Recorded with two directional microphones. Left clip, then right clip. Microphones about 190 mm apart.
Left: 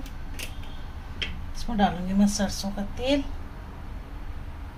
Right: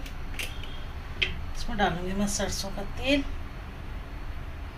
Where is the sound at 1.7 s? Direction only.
20° left (ahead or behind).